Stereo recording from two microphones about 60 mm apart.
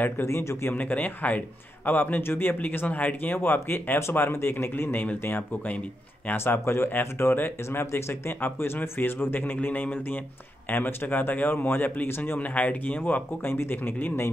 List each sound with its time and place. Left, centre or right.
0.0 s a man's voice: left
0.7 s speech: left
6.3 s a man's voice: left